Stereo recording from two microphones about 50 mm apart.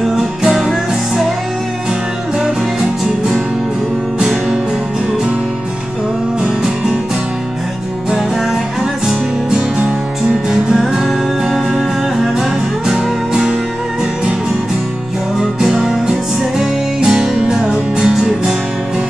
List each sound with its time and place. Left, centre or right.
0.1 s music: centre
4.2 s music: centre
9.0 s music: centre
15.6 s music: centre